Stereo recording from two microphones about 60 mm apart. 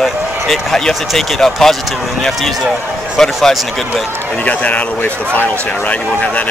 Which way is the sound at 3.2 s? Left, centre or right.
Centre.